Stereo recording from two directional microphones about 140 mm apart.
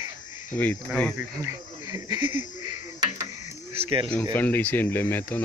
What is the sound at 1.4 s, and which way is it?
Speech, 25° right (ahead or behind).